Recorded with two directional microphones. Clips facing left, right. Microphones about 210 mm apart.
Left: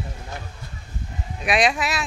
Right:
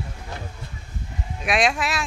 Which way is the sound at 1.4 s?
Centre (ahead or behind).